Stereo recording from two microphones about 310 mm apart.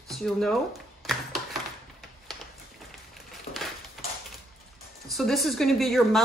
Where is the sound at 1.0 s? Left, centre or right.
Centre.